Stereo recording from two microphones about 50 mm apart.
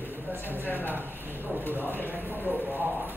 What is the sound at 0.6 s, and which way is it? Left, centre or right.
A man's voice, left.